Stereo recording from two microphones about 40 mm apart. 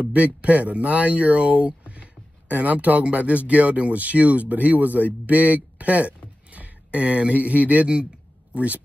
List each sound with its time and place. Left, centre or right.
0.0 s speech: right